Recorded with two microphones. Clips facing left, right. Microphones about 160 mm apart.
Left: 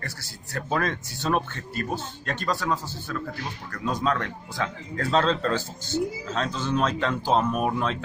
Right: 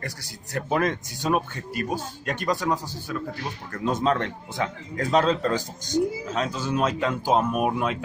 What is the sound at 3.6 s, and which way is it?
Speech, 25° right (ahead or behind).